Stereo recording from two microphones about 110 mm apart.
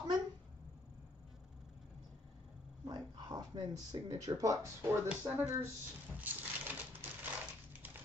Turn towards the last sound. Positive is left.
turn(degrees=-15)  # may be behind; listen again after turning